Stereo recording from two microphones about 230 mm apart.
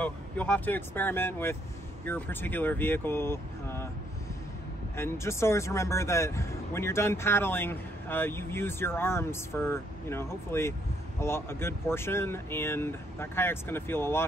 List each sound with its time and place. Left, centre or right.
0.0 s a man's voice: centre
4.9 s a man's voice: centre